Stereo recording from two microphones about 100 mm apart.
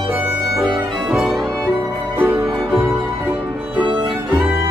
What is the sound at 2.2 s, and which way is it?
Music, 20° right (ahead or behind).